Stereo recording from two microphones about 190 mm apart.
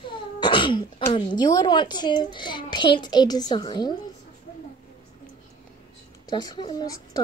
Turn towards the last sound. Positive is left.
turn(degrees=20)  # may be behind; listen again after turning